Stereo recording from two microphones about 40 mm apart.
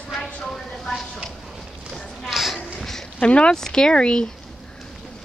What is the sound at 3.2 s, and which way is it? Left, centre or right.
Speech, left.